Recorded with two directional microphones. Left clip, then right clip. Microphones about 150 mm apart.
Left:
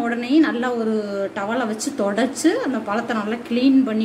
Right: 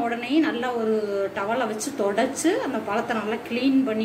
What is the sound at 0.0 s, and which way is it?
A woman's voice, 55° left (ahead or behind).